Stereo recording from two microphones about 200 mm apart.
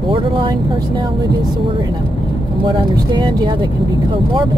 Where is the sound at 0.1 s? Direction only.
25° right (ahead or behind).